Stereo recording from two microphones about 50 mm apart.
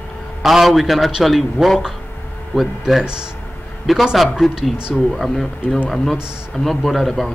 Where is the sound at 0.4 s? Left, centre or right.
Centre.